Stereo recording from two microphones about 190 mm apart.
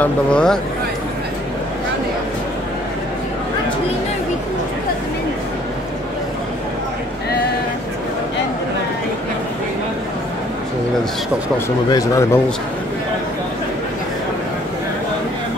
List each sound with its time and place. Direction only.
0.0 s speech: 5° left (ahead or behind)
11.9 s speech: 15° left (ahead or behind)